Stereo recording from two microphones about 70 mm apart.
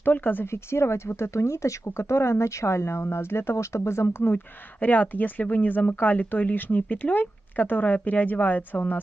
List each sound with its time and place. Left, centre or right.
0.0 s speech: left
4.7 s speech: left